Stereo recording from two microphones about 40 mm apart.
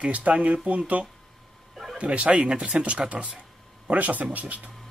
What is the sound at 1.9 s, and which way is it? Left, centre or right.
Speech, right.